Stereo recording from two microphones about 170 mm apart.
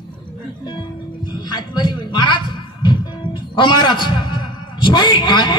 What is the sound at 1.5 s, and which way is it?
Music, 25° left (ahead or behind).